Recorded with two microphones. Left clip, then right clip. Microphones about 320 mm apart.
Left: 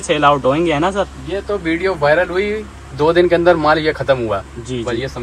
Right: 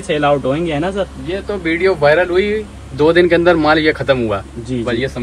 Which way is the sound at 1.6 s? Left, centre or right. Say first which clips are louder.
Right 6 dB; left.